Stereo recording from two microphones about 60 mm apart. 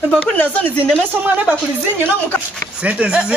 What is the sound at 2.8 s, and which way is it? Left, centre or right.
Speech, centre.